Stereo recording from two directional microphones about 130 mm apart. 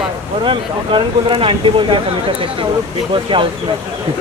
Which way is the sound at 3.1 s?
40° right (ahead or behind).